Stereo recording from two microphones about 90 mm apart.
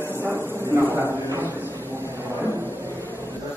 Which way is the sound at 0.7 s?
30° right (ahead or behind).